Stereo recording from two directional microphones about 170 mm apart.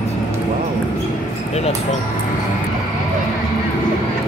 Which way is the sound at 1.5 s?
40° left (ahead or behind).